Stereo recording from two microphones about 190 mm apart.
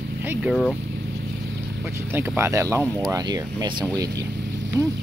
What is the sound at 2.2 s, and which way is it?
Speech, 15° right (ahead or behind).